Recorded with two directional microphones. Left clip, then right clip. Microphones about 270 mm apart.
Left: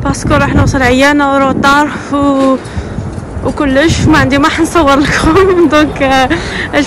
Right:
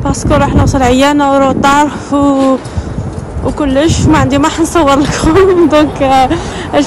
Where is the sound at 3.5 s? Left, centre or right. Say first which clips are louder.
Left 1 dB; centre.